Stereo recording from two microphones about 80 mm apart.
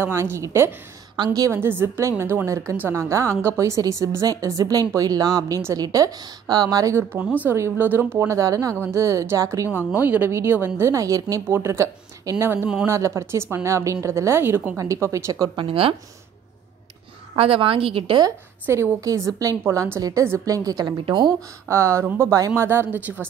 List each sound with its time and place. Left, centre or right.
0.0 s a woman's voice: right
1.1 s a woman's voice: right
1.5 s a woman's voice: right
7.2 s speech: centre
7.5 s speech: right
8.4 s a woman's voice: right
9.8 s a woman's voice: right
11.4 s a woman's voice: right
14.8 s a woman's voice: right
17.6 s a woman's voice: right
18.9 s a woman's voice: right
21.6 s a woman's voice: right